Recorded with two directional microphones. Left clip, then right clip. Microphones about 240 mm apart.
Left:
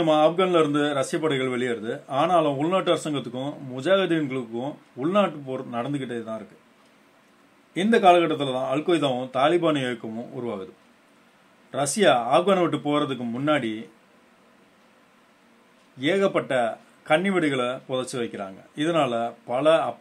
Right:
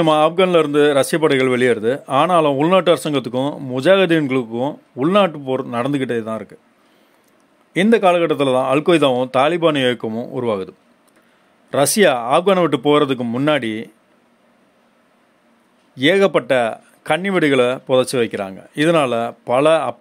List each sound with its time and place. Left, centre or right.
0.0 s speech: right
7.9 s speech: right
11.7 s speech: right
16.0 s speech: right